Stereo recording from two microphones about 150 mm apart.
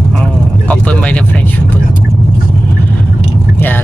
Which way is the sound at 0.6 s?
10° left (ahead or behind).